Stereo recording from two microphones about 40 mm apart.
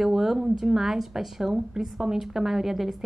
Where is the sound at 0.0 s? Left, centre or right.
Centre.